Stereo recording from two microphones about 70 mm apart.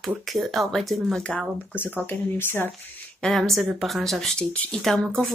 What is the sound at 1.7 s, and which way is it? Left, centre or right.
Speech, left.